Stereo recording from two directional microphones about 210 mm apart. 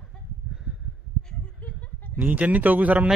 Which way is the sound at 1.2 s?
5° left (ahead or behind).